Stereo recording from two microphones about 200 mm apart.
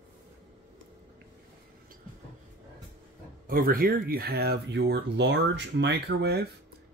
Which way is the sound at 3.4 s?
45° right (ahead or behind).